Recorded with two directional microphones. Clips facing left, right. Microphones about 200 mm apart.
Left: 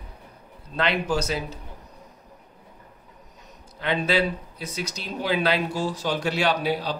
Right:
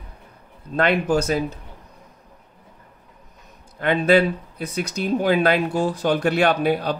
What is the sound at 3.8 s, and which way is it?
Speech, 55° right (ahead or behind).